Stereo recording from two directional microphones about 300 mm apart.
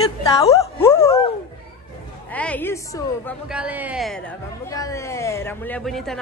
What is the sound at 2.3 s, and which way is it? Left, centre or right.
A woman's voice, centre.